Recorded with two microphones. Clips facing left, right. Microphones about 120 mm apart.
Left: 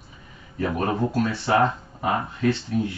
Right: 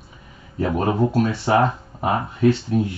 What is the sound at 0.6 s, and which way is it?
Speech, 20° right (ahead or behind).